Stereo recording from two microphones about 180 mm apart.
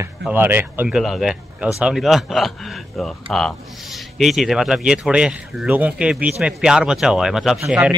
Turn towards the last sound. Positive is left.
turn(degrees=-5)  # may be behind; listen again after turning